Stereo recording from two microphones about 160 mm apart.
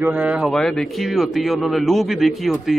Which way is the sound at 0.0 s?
10° right (ahead or behind).